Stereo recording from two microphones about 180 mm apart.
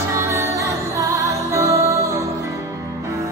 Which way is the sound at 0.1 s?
15° right (ahead or behind).